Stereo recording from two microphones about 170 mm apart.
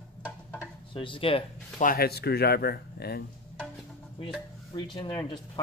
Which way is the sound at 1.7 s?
60° left (ahead or behind).